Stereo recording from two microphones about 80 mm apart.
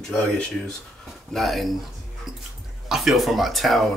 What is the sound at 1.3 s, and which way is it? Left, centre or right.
Speech, centre.